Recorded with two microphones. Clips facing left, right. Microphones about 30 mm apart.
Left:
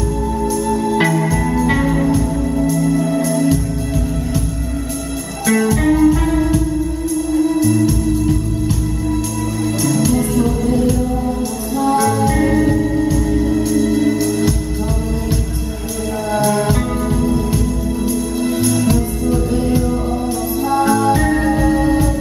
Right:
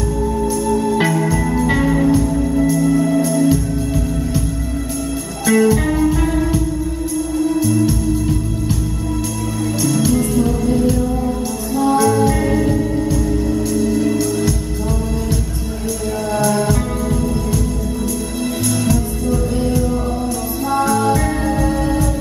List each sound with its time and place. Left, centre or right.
0.8 s organ: centre
1.5 s music: centre
5.5 s music: centre
9.8 s music: centre; by 14.1 s left
14.1 s music: centre
21.3 s music: centre
21.6 s music: centre